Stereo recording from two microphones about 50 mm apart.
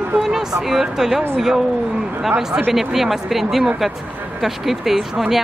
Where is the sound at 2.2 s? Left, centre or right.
Centre.